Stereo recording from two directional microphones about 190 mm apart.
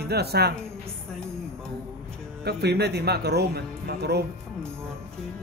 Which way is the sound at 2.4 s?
60° right (ahead or behind).